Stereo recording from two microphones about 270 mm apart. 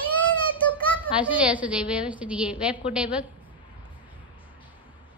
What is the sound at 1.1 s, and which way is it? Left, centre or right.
Child singing, centre.